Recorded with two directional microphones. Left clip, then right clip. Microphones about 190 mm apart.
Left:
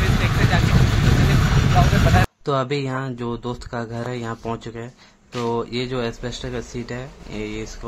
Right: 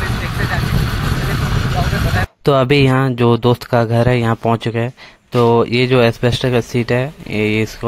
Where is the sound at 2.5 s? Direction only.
45° right (ahead or behind).